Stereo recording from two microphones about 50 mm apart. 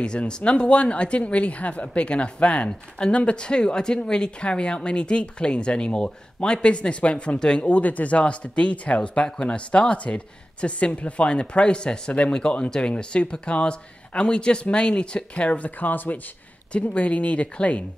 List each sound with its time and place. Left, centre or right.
0.0 s speech: centre
7.6 s speech: left
16.7 s speech: left